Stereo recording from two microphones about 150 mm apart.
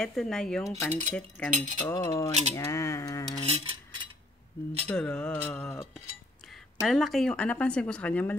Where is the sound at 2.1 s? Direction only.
20° left (ahead or behind).